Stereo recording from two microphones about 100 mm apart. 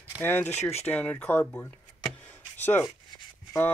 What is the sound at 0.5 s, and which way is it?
Speech, 90° left.